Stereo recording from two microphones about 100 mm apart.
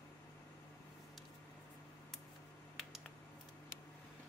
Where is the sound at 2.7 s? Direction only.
Centre (ahead or behind).